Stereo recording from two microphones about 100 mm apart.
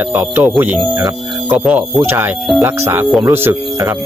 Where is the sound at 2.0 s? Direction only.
20° right (ahead or behind).